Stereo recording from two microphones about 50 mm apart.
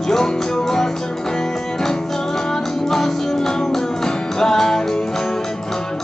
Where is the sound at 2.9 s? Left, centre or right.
Centre.